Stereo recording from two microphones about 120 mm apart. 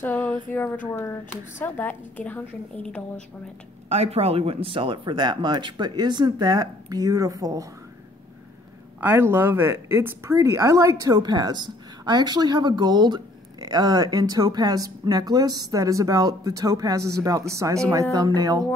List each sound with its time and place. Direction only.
0.0 s a sound: 15° left (ahead or behind)
0.5 s a woman's voice: 15° left (ahead or behind)
3.9 s speech: 60° right (ahead or behind); by 7.6 s 30° right (ahead or behind)
9.0 s speech: 20° right (ahead or behind)